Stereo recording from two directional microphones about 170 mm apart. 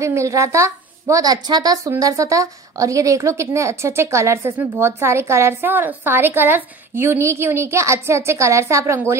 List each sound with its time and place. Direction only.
0.0 s a woman's voice: 15° right (ahead or behind)